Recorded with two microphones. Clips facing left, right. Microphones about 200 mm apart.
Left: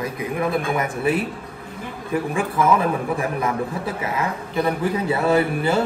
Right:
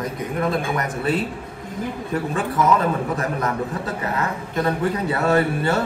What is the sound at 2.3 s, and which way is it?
Speech, 10° left (ahead or behind).